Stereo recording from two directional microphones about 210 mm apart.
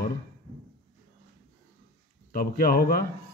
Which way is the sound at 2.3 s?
45° left (ahead or behind).